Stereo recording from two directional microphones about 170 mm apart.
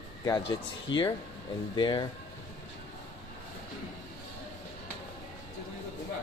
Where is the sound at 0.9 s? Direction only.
30° left (ahead or behind).